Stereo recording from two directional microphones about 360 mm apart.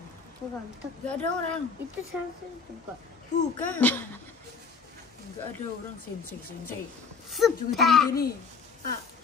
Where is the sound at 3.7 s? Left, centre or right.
Centre.